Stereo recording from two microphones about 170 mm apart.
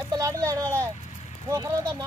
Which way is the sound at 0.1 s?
20° right (ahead or behind).